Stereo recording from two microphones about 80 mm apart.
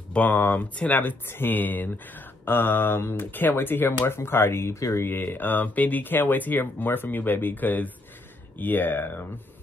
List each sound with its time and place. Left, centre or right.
0.1 s speech: left
5.0 s speech: left